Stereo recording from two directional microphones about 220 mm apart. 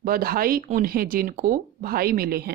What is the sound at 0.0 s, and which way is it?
A woman's voice, 40° right (ahead or behind).